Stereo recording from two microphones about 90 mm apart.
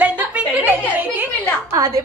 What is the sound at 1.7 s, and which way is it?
Speech, 35° right (ahead or behind).